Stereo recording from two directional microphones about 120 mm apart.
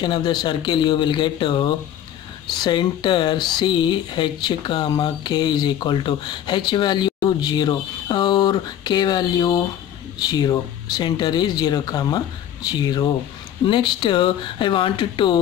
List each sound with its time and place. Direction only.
0.0 s speech: 40° left (ahead or behind)